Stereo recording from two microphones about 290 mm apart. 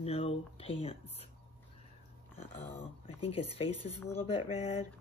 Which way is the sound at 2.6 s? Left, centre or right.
Left.